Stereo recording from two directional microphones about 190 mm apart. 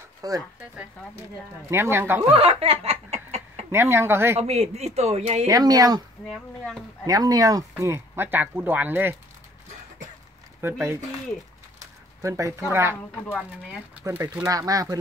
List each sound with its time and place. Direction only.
0.2 s speech: 20° right (ahead or behind)
1.7 s speech: 15° right (ahead or behind)
2.3 s snicker: 30° right (ahead or behind)
3.7 s speech: 15° right (ahead or behind)
4.4 s speech: 35° right (ahead or behind)
5.5 s speech: 20° right (ahead or behind)
6.2 s speech: centre (ahead or behind)
7.1 s speech: 20° right (ahead or behind)
10.6 s speech: 15° right (ahead or behind)
12.2 s speech: 15° right (ahead or behind)
13.2 s speech: 10° left (ahead or behind)
14.0 s speech: 15° right (ahead or behind)